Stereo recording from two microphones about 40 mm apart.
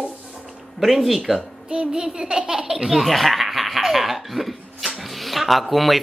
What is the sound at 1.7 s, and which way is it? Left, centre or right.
A child's voice, right.